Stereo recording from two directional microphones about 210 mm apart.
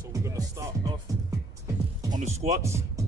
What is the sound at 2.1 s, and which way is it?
Speech, 30° right (ahead or behind).